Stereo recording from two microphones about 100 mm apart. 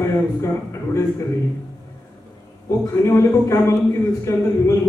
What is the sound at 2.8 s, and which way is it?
A man's voice, 30° left (ahead or behind).